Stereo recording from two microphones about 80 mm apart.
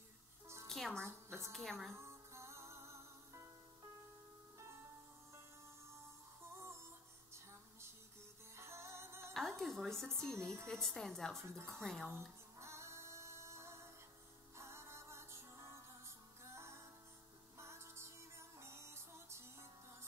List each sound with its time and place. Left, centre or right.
0.7 s music: centre
1.0 s a woman's voice: right
1.5 s a woman's voice: centre
2.0 s music: right
8.5 s music: right
9.3 s a sound: centre
10.4 s a woman's voice: centre
11.4 s a woman's voice: right
11.7 s a woman's voice: centre
12.5 s music: right